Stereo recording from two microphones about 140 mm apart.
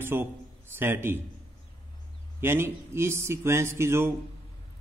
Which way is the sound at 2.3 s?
15° right (ahead or behind).